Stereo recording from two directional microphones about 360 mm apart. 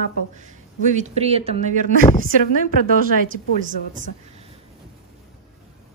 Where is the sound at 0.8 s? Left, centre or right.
Centre.